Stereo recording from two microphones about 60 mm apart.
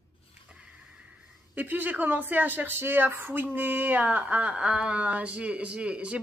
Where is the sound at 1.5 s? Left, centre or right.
Right.